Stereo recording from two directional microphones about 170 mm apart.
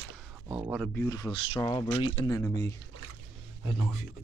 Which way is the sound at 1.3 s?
30° left (ahead or behind).